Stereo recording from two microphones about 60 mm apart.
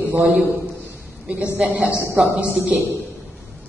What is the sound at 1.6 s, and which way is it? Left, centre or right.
A woman's voice, right.